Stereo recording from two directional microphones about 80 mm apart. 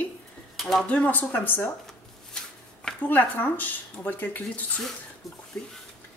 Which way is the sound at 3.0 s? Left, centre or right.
Left.